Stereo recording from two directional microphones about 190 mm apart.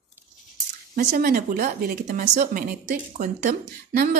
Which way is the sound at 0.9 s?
50° right (ahead or behind).